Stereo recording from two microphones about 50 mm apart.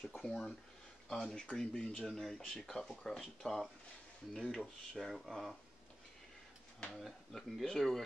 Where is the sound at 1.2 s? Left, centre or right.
Centre.